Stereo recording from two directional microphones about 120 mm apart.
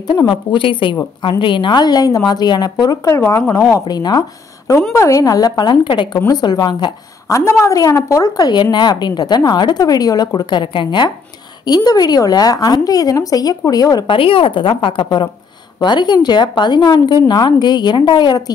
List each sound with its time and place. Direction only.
0.1 s a woman's voice: 40° left (ahead or behind)
3.2 s speech: 20° left (ahead or behind)
3.8 s a woman's voice: 35° left (ahead or behind)
14.1 s a woman's voice: 45° left (ahead or behind)